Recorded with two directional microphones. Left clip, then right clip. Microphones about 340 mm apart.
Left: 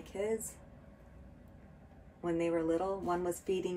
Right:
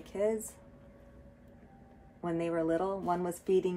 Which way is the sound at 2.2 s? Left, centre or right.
Right.